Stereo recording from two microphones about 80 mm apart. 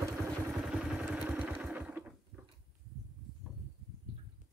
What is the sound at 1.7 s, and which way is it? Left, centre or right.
Sewing machine, right.